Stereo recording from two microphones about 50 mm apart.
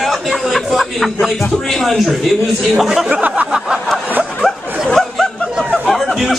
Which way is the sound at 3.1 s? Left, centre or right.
Right.